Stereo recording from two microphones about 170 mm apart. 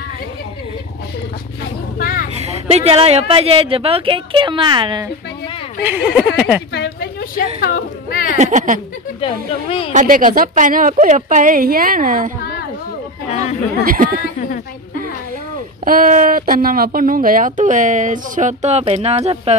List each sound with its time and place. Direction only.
2.0 s a sound: 60° left (ahead or behind)
2.3 s a woman's voice: 40° right (ahead or behind)
5.9 s speech: 10° right (ahead or behind)
6.7 s a woman's voice: 75° left (ahead or behind); by 8.3 s 60° left (ahead or behind)
8.3 s speech: 45° right (ahead or behind)
9.2 s speech: 35° left (ahead or behind)
9.9 s speech: 50° right (ahead or behind)
13.3 s chatter: 40° left (ahead or behind)
13.8 s speech: 55° right (ahead or behind)
15.8 s speech: 55° right (ahead or behind); by 19.5 s 40° right (ahead or behind)